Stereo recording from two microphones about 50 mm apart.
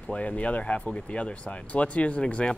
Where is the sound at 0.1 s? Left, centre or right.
Left.